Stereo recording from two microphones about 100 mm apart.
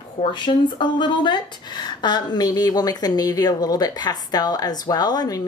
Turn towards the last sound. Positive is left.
turn(degrees=40)  # may be behind; listen again after turning